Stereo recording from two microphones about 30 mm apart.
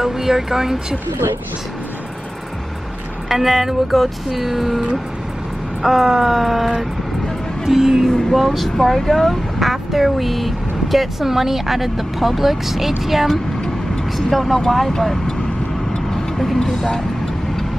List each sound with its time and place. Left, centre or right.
0.0 s speech: centre
3.3 s speech: centre
3.9 s speech: centre
6.0 s speech: centre
6.3 s speech: centre
8.1 s speech: centre
9.6 s speech: centre
14.1 s speech: centre
16.5 s vehicle: centre